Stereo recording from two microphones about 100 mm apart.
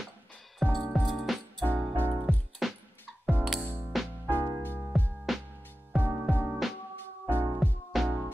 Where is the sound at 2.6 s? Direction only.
Centre (ahead or behind).